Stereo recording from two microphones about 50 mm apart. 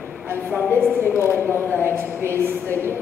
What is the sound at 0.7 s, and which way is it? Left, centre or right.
Speech, right.